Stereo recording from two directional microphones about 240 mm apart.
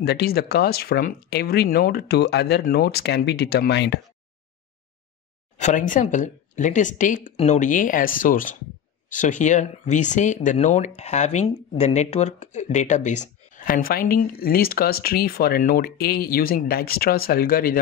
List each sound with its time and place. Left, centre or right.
0.0 s speech: left
5.6 s speech: left